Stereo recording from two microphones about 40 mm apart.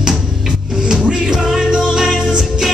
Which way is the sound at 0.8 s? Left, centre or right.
Centre.